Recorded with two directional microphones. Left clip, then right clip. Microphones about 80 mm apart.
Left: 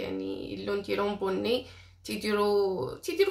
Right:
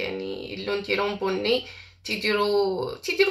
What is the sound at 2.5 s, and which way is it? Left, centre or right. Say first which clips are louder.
Speech: right 3 dB; left.